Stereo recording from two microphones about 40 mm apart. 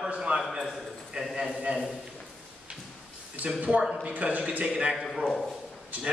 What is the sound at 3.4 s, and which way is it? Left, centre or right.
A man's voice, right.